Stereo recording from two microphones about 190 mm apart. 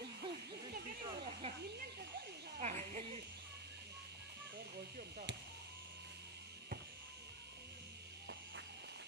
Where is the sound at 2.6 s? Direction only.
40° right (ahead or behind).